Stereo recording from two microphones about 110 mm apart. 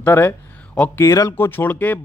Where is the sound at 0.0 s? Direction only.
20° left (ahead or behind).